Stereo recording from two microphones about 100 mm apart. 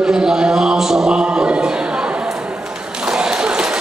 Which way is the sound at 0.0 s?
5° right (ahead or behind).